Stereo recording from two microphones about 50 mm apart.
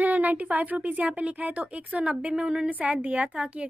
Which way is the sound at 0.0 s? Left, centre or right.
Right.